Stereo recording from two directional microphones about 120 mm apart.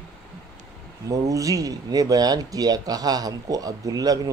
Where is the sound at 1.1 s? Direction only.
30° right (ahead or behind).